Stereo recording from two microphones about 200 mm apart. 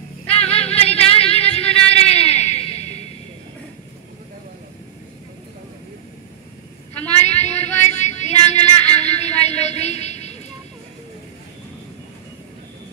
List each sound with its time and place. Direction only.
0.5 s music: 30° left (ahead or behind)
7.0 s female singing: 35° left (ahead or behind)